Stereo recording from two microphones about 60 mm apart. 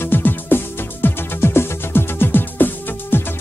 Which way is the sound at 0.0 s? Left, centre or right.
Left.